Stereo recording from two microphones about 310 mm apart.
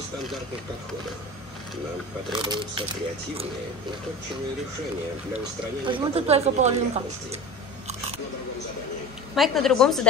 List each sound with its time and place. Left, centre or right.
2.3 s speech: centre
5.9 s speech: centre
9.3 s a woman's voice: centre